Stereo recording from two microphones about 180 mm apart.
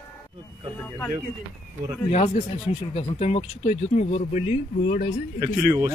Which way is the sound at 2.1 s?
35° left (ahead or behind).